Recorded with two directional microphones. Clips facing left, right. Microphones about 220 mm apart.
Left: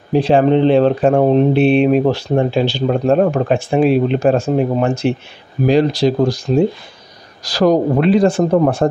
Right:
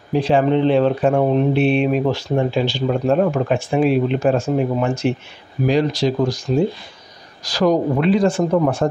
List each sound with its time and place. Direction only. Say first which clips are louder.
0.1 s speech: left 4 dB; 35° left (ahead or behind)